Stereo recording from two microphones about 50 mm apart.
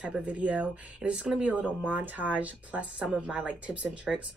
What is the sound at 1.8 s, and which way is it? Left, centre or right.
Speech, right.